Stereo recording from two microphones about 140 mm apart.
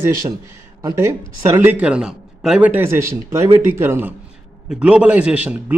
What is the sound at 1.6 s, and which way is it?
A man's voice, 10° right (ahead or behind).